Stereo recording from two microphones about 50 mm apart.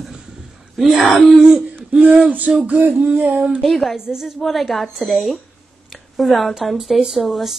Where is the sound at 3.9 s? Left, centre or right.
Centre.